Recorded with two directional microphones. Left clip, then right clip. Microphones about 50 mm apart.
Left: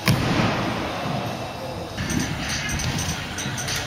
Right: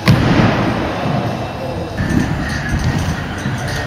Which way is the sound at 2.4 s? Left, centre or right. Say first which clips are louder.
Right 5 dB; left.